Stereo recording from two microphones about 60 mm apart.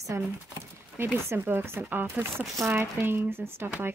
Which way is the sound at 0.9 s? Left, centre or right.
Right.